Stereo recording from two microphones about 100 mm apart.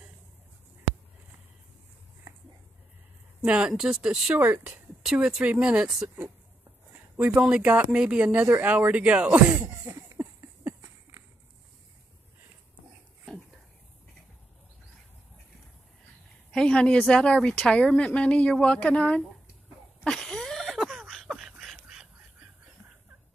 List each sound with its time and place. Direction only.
3.4 s speech: 10° right (ahead or behind)
4.4 s speech: 20° right (ahead or behind)
5.0 s speech: 5° right (ahead or behind)
6.0 s speech: 25° right (ahead or behind)
7.2 s speech: 10° right (ahead or behind)
9.7 s a sound: 30° right (ahead or behind)
16.5 s speech: 10° left (ahead or behind)
20.0 s a sound: 5° left (ahead or behind)